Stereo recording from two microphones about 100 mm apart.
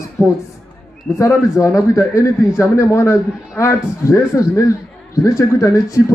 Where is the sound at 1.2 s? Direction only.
30° left (ahead or behind).